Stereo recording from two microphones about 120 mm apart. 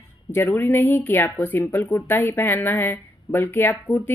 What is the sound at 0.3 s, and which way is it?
Speech, 15° left (ahead or behind).